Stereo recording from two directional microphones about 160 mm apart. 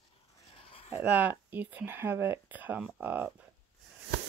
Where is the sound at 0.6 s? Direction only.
35° left (ahead or behind).